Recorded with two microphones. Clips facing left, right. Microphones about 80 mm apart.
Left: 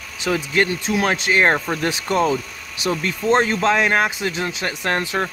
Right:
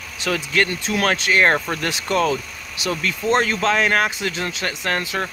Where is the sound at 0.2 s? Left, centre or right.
Left.